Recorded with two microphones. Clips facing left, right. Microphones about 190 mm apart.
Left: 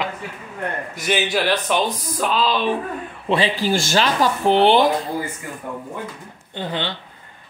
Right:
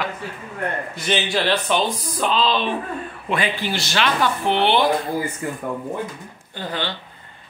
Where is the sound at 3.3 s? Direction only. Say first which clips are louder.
Left 5 dB; 30° left (ahead or behind).